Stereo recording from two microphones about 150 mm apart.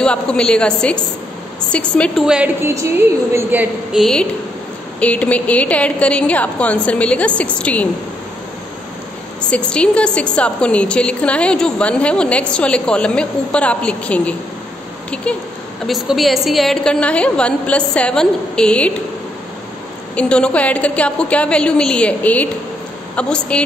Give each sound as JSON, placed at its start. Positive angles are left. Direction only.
{"t": 0.0, "sound": "a woman's voice", "side_deg": 5}
{"t": 2.2, "sound": "a woman's voice", "side_deg": -10}
{"t": 3.9, "sound": "a woman's voice", "side_deg": 5}
{"t": 9.4, "sound": "a woman's voice", "side_deg": 5}
{"t": 20.2, "sound": "a woman's voice", "side_deg": 5}